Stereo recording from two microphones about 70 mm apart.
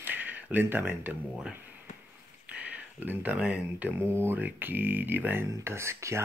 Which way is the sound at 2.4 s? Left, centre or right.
Right.